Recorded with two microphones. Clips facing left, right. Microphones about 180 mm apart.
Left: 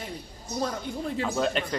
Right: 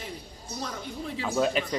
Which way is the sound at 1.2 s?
5° right (ahead or behind).